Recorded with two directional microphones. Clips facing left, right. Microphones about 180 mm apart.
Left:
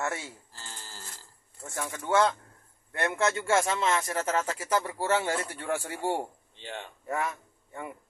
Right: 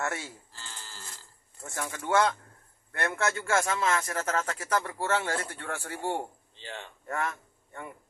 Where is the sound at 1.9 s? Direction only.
25° left (ahead or behind); by 7.9 s 10° left (ahead or behind).